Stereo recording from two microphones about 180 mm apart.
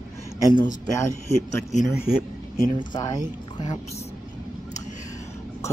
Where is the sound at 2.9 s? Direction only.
25° left (ahead or behind).